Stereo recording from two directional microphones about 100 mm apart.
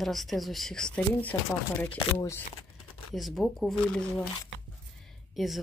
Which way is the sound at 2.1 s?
25° left (ahead or behind).